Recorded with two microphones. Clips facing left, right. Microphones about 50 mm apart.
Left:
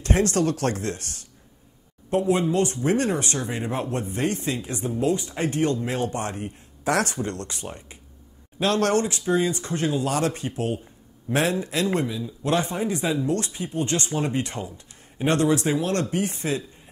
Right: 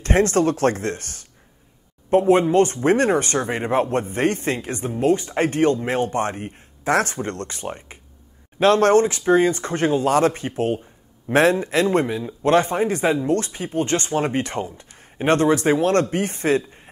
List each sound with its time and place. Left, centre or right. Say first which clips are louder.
0.0 s a man's voice: right 4 dB; right